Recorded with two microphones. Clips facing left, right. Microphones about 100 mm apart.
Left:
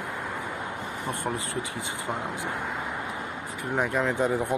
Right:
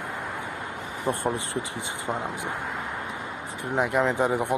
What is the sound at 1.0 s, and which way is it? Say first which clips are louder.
Speech: right 5 dB; 30° right (ahead or behind).